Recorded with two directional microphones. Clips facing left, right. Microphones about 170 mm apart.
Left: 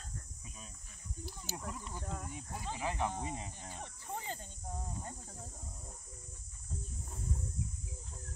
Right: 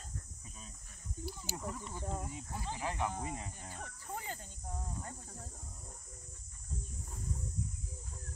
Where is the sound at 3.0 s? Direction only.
25° left (ahead or behind).